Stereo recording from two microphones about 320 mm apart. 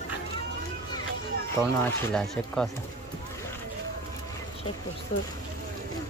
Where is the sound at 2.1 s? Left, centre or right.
Centre.